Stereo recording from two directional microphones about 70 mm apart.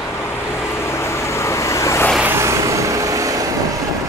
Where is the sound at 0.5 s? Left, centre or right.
Left.